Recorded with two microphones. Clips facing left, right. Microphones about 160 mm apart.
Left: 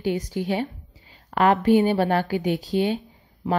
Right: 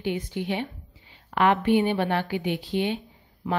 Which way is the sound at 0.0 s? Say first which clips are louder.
Left 3 dB; 40° left (ahead or behind).